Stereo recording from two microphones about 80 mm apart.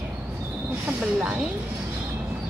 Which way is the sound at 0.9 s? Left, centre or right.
Right.